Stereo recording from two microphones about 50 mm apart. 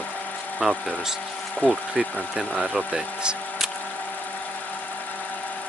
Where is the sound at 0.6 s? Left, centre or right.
Centre.